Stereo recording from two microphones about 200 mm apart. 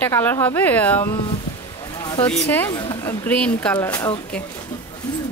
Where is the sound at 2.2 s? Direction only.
10° left (ahead or behind).